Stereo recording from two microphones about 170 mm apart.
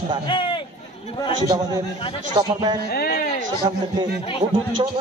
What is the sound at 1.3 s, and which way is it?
Speech, 25° right (ahead or behind).